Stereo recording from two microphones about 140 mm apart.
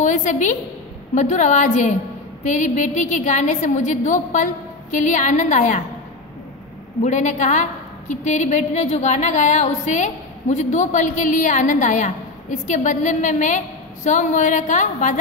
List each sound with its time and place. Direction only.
0.0 s a woman's voice: 60° left (ahead or behind)
7.0 s a woman's voice: 60° left (ahead or behind)